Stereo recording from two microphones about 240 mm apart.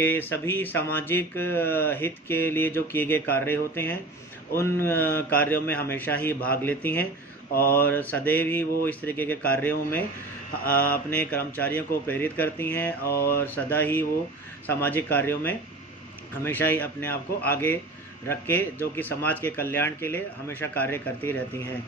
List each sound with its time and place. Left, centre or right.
0.0 s speech: centre
13.0 s mantra: left
13.7 s speech: centre